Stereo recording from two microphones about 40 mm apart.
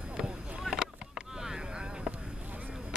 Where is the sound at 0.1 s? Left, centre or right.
Right.